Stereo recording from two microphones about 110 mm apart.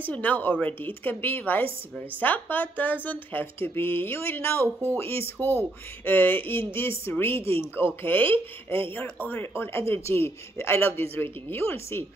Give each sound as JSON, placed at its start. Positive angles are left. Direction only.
{"t": 0.0, "sound": "a woman's voice", "side_deg": 15}